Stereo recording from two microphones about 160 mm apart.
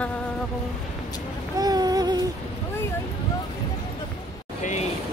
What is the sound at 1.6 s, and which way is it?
Music, 25° right (ahead or behind).